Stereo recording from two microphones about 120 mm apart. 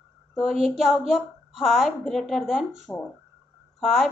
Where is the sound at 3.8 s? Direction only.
Centre (ahead or behind).